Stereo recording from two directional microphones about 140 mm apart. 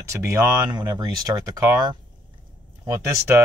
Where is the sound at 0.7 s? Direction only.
30° right (ahead or behind).